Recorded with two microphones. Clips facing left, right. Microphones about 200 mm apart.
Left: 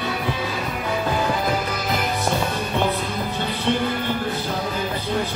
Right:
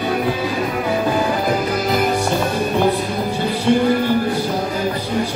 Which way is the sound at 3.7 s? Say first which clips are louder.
Right 7 dB; 10° right (ahead or behind).